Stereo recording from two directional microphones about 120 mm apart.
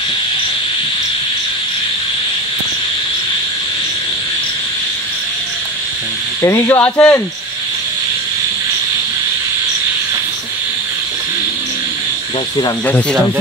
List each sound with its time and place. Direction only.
6.4 s speech: 25° left (ahead or behind)